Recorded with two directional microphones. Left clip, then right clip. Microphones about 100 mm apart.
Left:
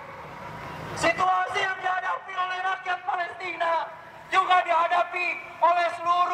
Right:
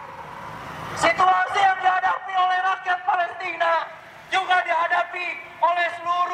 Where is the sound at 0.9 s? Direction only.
30° right (ahead or behind).